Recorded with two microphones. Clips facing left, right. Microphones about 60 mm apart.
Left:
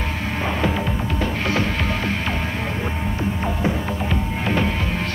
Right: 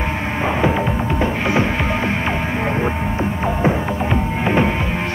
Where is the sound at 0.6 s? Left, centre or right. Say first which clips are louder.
Right 6 dB; right.